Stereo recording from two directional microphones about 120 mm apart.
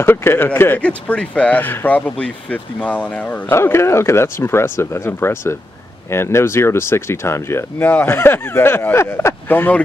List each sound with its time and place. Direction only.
0.0 s speech: 20° left (ahead or behind)